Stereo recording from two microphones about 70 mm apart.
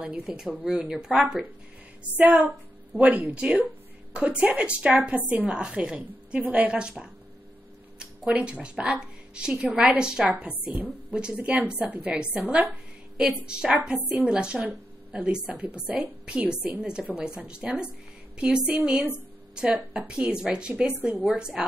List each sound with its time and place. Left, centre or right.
0.2 s a woman's voice: centre
2.1 s a woman's voice: right
8.3 s a woman's voice: centre
11.1 s a woman's voice: centre
14.7 s a sound: centre
15.3 s a woman's voice: centre